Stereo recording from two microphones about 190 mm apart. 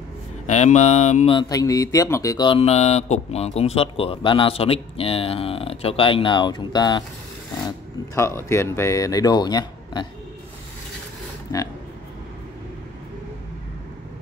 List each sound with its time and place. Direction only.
0.5 s mantra: 35° left (ahead or behind)
1.3 s mantra: 20° left (ahead or behind)
8.1 s speech: 15° left (ahead or behind)
11.5 s speech: 20° left (ahead or behind)